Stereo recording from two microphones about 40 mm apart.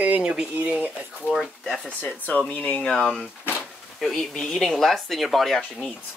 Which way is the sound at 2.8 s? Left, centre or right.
Centre.